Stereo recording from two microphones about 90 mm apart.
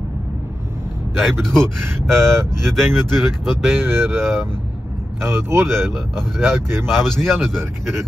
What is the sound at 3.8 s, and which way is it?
Speech, 25° right (ahead or behind).